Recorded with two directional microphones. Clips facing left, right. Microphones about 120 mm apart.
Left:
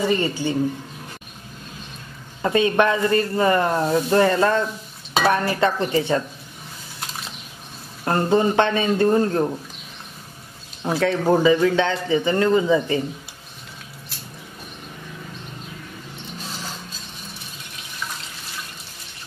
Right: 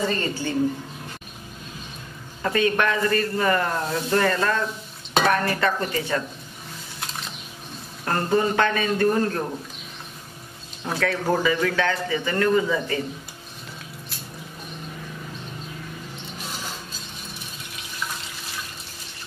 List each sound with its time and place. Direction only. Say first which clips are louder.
0.0 s a woman's voice: left 4 dB; 15° left (ahead or behind)
2.4 s speech: left 4 dB; 20° left (ahead or behind)
5.2 s dishes: left 1 dB; centre (ahead or behind)
5.5 s speech: left 4 dB; 25° left (ahead or behind)
8.0 s speech: left 3 dB; 25° left (ahead or behind)
11.0 s speech: left 5 dB; 25° left (ahead or behind)